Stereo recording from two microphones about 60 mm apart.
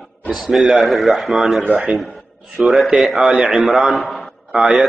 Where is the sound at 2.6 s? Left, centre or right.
Centre.